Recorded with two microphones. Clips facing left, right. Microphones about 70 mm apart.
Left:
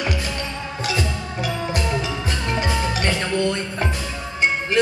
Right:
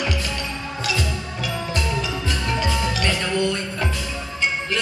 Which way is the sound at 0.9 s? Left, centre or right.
Left.